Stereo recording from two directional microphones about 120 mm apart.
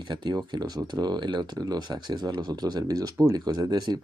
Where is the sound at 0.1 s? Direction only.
40° right (ahead or behind).